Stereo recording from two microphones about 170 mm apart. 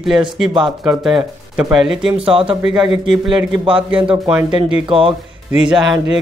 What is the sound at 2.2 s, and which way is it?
Speech, 30° right (ahead or behind).